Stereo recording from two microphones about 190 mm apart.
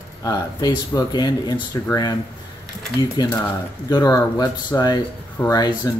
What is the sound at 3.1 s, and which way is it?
Speech, 20° left (ahead or behind).